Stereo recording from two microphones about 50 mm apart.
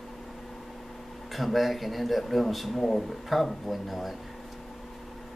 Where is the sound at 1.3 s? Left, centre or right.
Centre.